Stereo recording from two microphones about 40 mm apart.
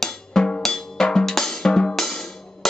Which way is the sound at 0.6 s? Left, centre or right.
Centre.